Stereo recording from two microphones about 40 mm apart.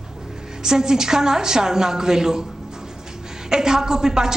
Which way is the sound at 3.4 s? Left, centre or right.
Centre.